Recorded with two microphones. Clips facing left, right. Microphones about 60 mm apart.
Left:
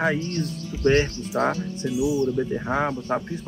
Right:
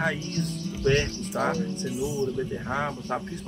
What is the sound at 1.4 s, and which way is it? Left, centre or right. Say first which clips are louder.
Music: left 4 dB; left.